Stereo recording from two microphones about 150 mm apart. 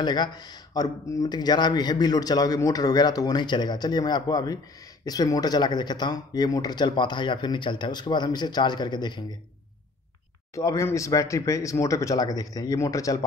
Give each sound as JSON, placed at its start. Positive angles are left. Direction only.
{"t": 0.0, "sound": "speech", "side_deg": 30}
{"t": 10.5, "sound": "speech", "side_deg": 20}